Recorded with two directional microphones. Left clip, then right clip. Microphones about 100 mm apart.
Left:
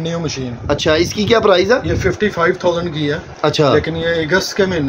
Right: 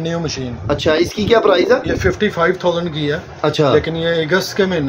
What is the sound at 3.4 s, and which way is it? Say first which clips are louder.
Speech: left 1 dB; 5° left (ahead or behind).